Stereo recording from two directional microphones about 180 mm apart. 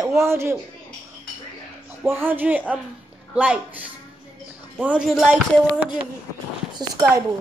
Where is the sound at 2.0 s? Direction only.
10° right (ahead or behind).